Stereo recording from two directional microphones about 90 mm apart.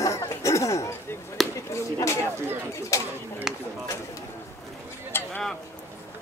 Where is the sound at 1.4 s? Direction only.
Centre (ahead or behind).